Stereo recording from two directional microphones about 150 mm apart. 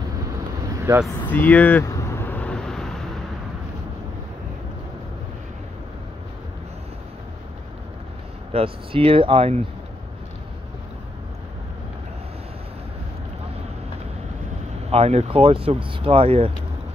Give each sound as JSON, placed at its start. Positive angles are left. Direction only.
{"t": 0.7, "sound": "vehicle", "side_deg": -20}
{"t": 1.3, "sound": "vehicle", "side_deg": 10}
{"t": 8.5, "sound": "speech", "side_deg": -40}
{"t": 14.9, "sound": "speech", "side_deg": -45}